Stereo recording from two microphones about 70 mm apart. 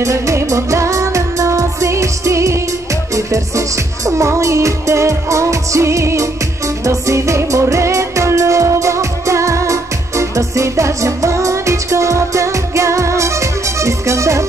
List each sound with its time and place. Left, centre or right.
0.0 s music: right